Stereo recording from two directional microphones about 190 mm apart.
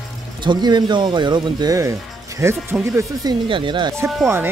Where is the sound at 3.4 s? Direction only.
25° right (ahead or behind).